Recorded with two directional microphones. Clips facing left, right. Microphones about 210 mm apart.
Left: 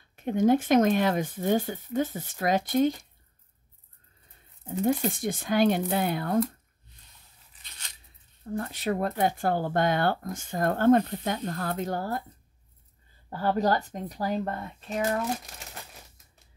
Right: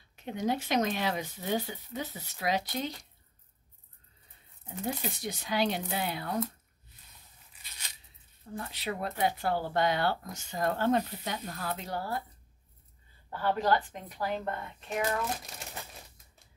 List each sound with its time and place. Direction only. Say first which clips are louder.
0.1 s speech: left 9 dB; 50° left (ahead or behind)
4.6 s speech: left 9 dB; 50° left (ahead or behind)
8.5 s speech: left 7 dB; 50° left (ahead or behind)
13.3 s speech: left 3 dB; 40° left (ahead or behind)